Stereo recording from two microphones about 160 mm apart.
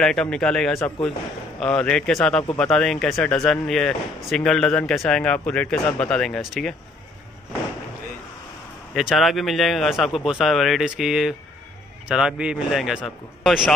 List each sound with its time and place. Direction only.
0.0 s speech: 5° left (ahead or behind)
8.9 s speech: centre (ahead or behind)